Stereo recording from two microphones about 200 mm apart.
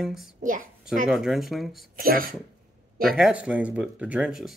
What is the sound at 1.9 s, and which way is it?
Speech, 45° right (ahead or behind).